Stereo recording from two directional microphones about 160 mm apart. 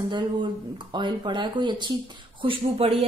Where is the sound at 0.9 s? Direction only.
30° right (ahead or behind).